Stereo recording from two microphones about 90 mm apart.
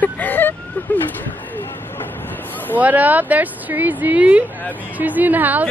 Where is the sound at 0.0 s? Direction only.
20° left (ahead or behind).